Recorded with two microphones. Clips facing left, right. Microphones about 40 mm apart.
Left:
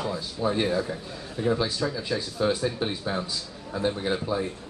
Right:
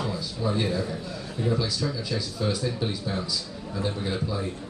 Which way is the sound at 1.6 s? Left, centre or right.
Left.